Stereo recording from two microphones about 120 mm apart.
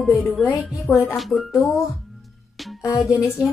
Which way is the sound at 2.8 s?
25° left (ahead or behind).